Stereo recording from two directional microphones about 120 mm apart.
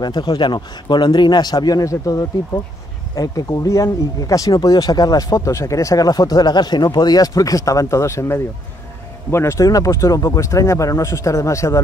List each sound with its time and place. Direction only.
0.0 s speech: 35° left (ahead or behind)